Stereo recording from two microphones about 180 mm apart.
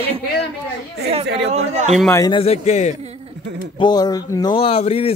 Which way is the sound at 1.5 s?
40° right (ahead or behind).